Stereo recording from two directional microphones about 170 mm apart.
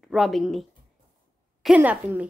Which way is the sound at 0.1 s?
Centre (ahead or behind).